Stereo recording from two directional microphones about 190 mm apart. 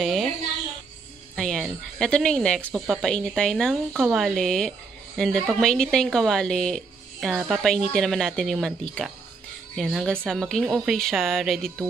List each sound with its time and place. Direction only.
0.0 s music: centre (ahead or behind)
1.3 s speech: centre (ahead or behind)